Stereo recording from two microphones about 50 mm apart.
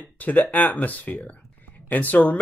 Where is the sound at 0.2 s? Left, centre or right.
Left.